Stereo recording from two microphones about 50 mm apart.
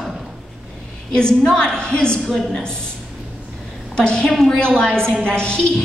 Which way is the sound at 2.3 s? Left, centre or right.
Centre.